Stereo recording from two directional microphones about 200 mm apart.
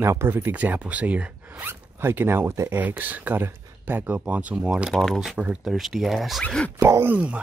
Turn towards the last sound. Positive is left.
turn(degrees=-10)  # may be behind; listen again after turning